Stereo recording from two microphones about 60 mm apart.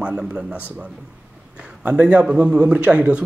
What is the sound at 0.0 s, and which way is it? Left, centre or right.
A man's voice, centre.